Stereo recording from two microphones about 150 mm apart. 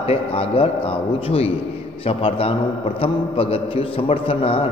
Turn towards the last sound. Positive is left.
turn(degrees=40)  # may be behind; listen again after turning